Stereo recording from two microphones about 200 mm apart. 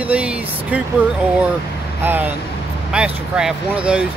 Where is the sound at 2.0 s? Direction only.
10° right (ahead or behind).